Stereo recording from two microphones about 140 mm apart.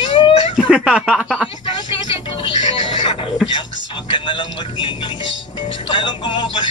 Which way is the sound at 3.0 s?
45° left (ahead or behind).